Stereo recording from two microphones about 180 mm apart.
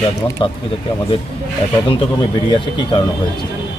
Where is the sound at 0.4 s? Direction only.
30° left (ahead or behind).